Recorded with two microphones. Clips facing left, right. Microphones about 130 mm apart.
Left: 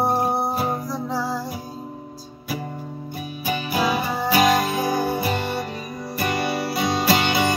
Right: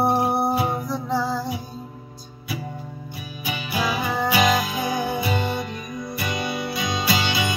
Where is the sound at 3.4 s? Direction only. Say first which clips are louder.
Left 3 dB; 45° left (ahead or behind).